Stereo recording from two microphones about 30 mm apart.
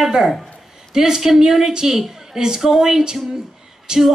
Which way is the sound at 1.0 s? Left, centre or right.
Centre.